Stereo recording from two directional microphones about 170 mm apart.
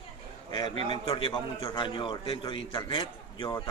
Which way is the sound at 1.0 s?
30° left (ahead or behind).